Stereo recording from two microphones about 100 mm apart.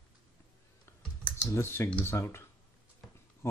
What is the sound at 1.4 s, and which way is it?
Speech, 25° left (ahead or behind).